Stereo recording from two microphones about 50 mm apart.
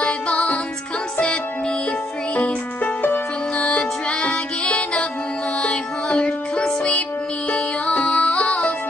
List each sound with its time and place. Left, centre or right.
0.0 s music: left
2.3 s music: left